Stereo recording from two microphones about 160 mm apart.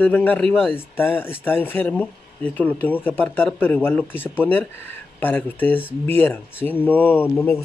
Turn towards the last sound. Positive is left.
turn(degrees=10)  # may be behind; listen again after turning